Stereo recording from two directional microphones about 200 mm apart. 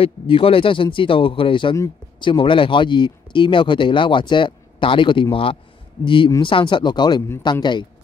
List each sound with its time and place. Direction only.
0.0 s speech: 25° left (ahead or behind)